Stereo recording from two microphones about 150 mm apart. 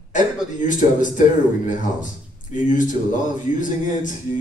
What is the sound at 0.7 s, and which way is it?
Speech, 55° left (ahead or behind).